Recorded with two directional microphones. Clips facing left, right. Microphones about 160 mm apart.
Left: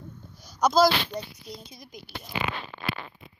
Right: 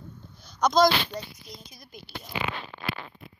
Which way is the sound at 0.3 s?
10° left (ahead or behind).